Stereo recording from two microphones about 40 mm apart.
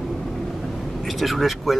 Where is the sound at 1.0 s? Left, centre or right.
Centre.